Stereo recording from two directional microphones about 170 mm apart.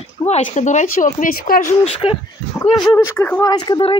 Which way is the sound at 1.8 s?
35° left (ahead or behind).